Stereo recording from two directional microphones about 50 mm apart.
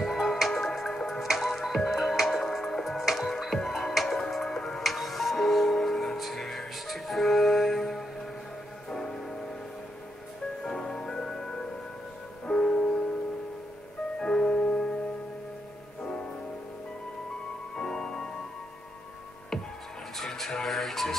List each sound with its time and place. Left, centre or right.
0.0 s music: centre
10.6 s music: centre
14.2 s music: centre
17.7 s music: centre
19.5 s music: centre
20.2 s a sound: centre